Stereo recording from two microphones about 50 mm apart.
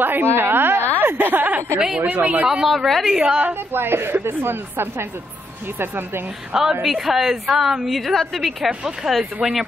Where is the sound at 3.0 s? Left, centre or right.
Centre.